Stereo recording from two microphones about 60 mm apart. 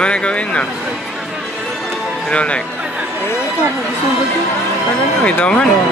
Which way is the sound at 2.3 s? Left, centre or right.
Centre.